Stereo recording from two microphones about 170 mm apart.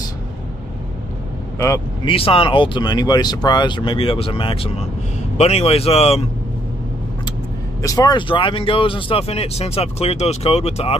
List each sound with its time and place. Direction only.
2.0 s speech: 35° left (ahead or behind)
7.8 s speech: 20° left (ahead or behind); by 11.0 s 35° left (ahead or behind)